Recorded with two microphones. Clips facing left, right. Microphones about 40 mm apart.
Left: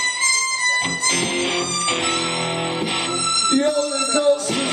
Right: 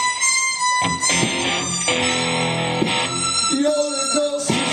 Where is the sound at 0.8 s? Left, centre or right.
Right.